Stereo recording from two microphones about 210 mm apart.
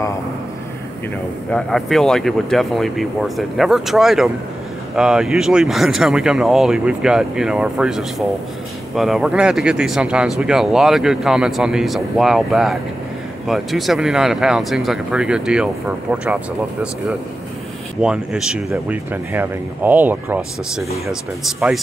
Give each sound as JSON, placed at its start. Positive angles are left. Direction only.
{"t": 1.5, "sound": "speech", "side_deg": 0}
{"t": 18.0, "sound": "speech", "side_deg": -5}